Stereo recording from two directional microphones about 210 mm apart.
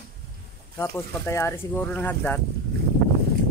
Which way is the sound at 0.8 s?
10° left (ahead or behind).